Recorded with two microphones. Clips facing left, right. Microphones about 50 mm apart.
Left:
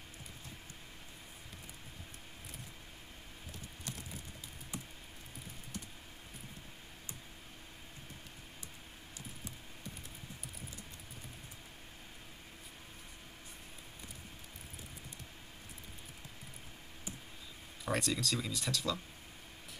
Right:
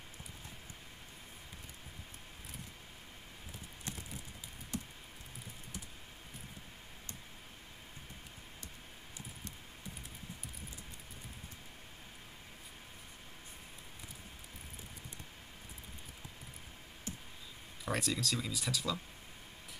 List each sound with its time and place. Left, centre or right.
4.7 s patter: centre
17.8 s speech: centre